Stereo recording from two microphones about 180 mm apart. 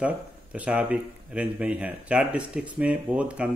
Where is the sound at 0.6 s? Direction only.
5° right (ahead or behind).